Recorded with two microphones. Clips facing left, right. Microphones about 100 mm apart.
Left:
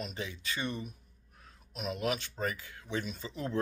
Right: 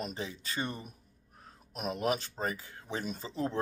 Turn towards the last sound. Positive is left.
turn(degrees=-35)  # may be behind; listen again after turning